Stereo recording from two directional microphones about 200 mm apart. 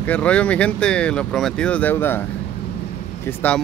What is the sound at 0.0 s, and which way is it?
Speech, 5° left (ahead or behind).